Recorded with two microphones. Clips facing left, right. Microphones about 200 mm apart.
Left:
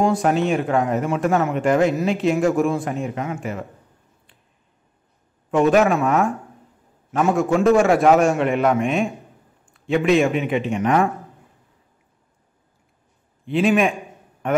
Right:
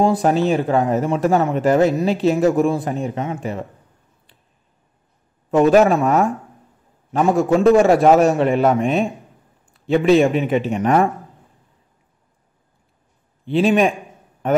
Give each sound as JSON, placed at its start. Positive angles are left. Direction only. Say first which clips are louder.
{"t": 0.2, "sound": "speech", "louder": "right 2 dB", "side_deg": -30}
{"t": 5.5, "sound": "speech", "louder": "right 3 dB", "side_deg": -35}
{"t": 7.1, "sound": "speech", "louder": "right 3 dB", "side_deg": -35}
{"t": 13.5, "sound": "speech", "louder": "right 2 dB", "side_deg": -35}